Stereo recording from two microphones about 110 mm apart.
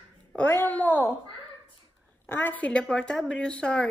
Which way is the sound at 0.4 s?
20° left (ahead or behind).